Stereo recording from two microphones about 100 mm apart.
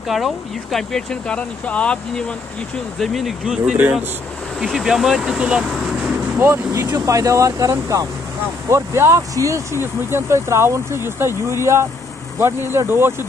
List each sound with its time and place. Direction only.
0.1 s speech: centre (ahead or behind)
3.0 s speech: centre (ahead or behind)
6.4 s speech: 30° right (ahead or behind)